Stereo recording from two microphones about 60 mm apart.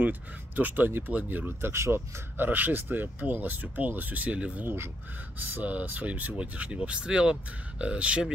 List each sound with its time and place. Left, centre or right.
0.0 s speech: right
1.7 s speech: right
2.0 s speech: right; by 8.3 s centre